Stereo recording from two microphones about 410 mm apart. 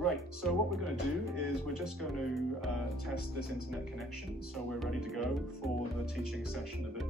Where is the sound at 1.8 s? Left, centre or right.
Centre.